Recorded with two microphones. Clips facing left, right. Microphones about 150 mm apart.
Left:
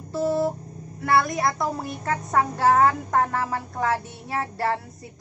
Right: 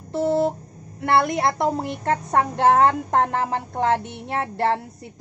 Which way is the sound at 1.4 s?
25° right (ahead or behind).